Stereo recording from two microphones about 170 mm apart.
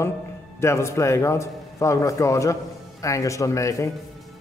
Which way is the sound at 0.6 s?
15° left (ahead or behind).